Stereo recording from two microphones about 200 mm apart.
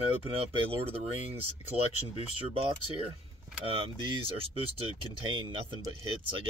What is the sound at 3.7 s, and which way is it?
Speech, 25° right (ahead or behind).